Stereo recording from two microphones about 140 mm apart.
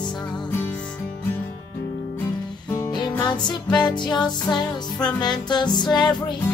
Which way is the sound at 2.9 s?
30° left (ahead or behind).